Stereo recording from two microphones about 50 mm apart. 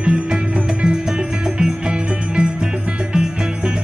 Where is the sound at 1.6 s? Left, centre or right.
Centre.